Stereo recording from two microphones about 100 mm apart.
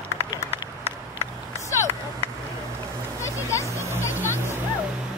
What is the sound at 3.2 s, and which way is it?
Music, 30° left (ahead or behind).